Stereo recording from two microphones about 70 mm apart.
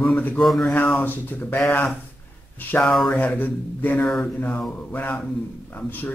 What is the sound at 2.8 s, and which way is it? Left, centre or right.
Speech, centre.